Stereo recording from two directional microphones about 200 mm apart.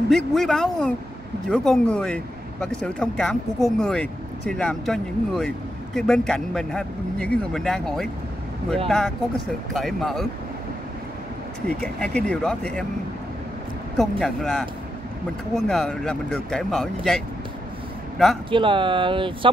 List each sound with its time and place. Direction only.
0.1 s speech: centre (ahead or behind)
11.8 s speech: 5° left (ahead or behind)
13.9 s speech: 5° left (ahead or behind)
18.5 s speech: 25° right (ahead or behind)